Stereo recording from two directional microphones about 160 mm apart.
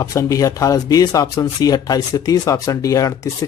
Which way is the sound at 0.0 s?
20° left (ahead or behind).